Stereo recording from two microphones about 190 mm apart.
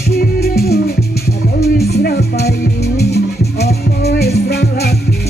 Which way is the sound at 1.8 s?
55° left (ahead or behind).